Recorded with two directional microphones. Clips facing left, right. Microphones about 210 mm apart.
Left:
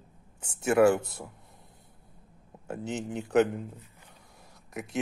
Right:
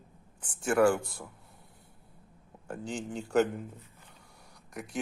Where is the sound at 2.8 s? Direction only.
20° left (ahead or behind).